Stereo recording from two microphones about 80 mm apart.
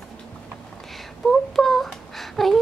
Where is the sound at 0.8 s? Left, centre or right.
Centre.